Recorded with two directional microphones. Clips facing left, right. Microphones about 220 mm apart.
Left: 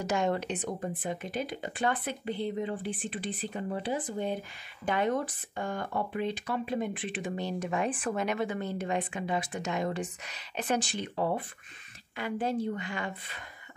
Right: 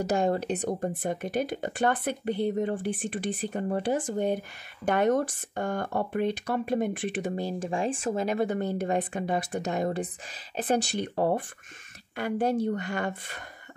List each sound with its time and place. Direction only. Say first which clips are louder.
0.1 s speech: right 2 dB; 35° right (ahead or behind)
7.7 s speech: right 3 dB; 25° right (ahead or behind); by 13.4 s 45° right (ahead or behind)